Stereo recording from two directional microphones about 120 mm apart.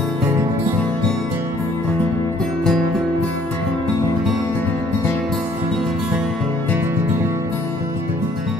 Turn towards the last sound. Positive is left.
turn(degrees=-20)  # may be behind; listen again after turning